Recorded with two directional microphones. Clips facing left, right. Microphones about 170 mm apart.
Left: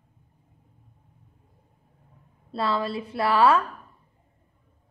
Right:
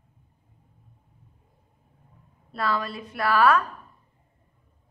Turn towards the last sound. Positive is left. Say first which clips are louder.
# left 1 dB
turn(degrees=25)  # may be behind; listen again after turning